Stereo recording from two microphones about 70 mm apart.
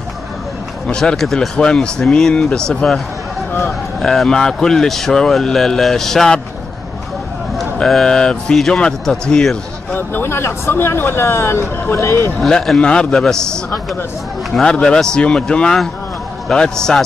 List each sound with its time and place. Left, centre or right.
0.8 s speech: centre
4.0 s speech: centre
7.5 s a man's voice: centre
9.9 s speech: left
12.4 s speech: centre